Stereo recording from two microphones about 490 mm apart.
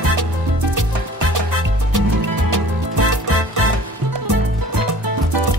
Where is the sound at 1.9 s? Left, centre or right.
Right.